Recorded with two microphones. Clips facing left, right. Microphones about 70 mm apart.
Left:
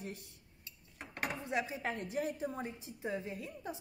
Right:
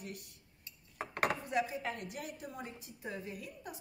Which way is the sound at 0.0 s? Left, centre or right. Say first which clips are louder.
Left 1 dB; left.